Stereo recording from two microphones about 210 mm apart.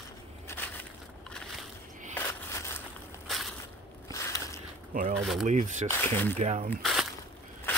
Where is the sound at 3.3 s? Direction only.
Centre (ahead or behind).